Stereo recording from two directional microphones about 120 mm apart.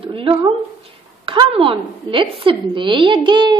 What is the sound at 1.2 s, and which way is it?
A woman's voice, 45° right (ahead or behind).